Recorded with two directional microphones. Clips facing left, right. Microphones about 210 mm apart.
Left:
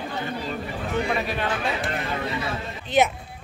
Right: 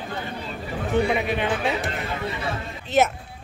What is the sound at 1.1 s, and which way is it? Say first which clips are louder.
Speech: right 3 dB; 20° right (ahead or behind).